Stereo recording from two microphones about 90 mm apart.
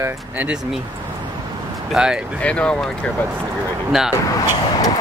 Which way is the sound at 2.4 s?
10° left (ahead or behind).